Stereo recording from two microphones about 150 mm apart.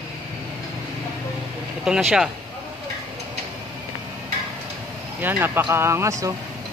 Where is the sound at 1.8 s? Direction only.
5° right (ahead or behind).